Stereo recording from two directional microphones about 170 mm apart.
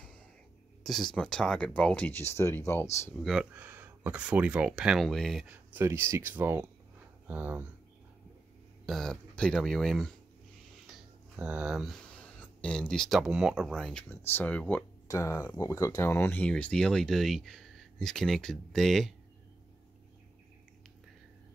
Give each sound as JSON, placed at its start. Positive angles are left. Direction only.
{"t": 0.8, "sound": "speech", "side_deg": 0}
{"t": 3.2, "sound": "speech", "side_deg": 0}
{"t": 8.8, "sound": "speech", "side_deg": 0}